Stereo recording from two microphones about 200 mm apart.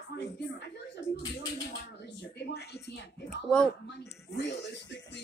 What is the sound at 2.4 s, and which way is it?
Speech, 55° left (ahead or behind).